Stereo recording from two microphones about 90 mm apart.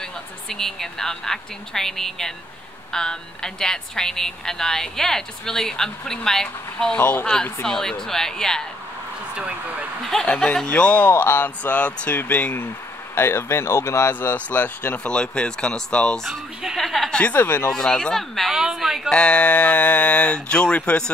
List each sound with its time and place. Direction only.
0.5 s a woman's voice: 5° left (ahead or behind)
7.0 s speech: 25° left (ahead or behind)
7.6 s a woman's voice: 5° left (ahead or behind)
10.2 s speech: 10° left (ahead or behind); by 14.3 s 30° left (ahead or behind)
14.3 s speech: 15° left (ahead or behind)
16.6 s a woman's voice: centre (ahead or behind)
17.2 s speech: 20° left (ahead or behind)
17.6 s a woman's voice: 10° left (ahead or behind)
19.0 s speech: 10° left (ahead or behind)